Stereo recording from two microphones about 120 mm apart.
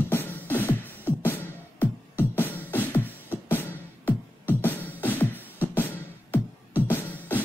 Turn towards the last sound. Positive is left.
turn(degrees=15)  # may be behind; listen again after turning